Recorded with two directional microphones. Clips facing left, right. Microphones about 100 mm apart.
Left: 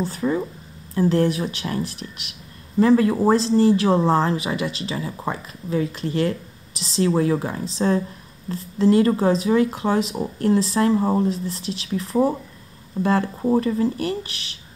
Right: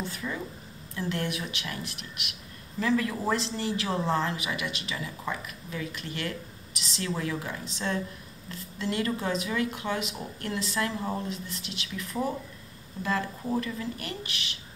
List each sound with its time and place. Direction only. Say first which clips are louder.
0.0 s speech: left 11 dB; 35° left (ahead or behind)